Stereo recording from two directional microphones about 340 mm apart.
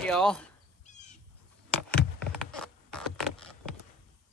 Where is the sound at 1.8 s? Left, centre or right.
Centre.